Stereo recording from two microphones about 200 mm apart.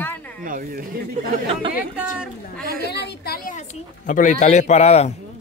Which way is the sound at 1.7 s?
5° right (ahead or behind).